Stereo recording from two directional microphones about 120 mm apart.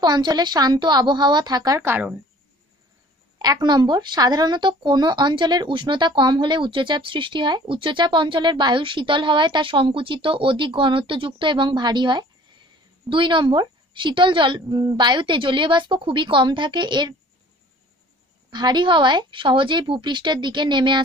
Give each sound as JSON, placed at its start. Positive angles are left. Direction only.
{"t": 0.0, "sound": "speech", "side_deg": -35}
{"t": 3.3, "sound": "a woman's voice", "side_deg": -35}
{"t": 18.5, "sound": "speech", "side_deg": -40}